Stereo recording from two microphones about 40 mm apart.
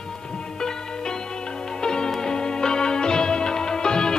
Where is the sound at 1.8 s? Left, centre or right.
Centre.